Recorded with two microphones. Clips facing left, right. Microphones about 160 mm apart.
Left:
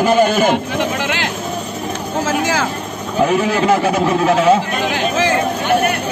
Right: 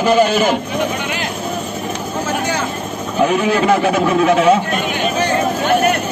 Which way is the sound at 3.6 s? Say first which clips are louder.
Even; 30° left (ahead or behind).